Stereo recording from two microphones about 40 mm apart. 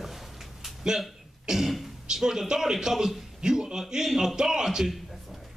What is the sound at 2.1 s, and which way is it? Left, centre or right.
Speech, centre.